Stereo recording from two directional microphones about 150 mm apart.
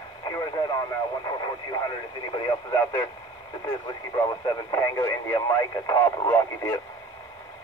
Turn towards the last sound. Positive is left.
turn(degrees=15)  # may be behind; listen again after turning